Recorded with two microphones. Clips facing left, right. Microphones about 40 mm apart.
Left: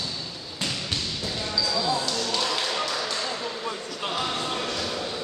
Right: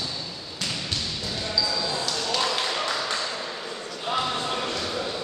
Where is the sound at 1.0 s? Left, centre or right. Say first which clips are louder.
Even; centre.